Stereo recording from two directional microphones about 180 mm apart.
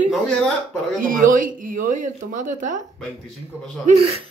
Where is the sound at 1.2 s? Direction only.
50° right (ahead or behind).